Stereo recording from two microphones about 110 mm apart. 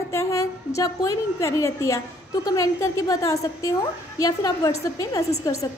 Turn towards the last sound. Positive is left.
turn(degrees=30)  # may be behind; listen again after turning